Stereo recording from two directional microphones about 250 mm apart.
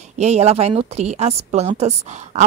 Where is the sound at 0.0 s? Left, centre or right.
Right.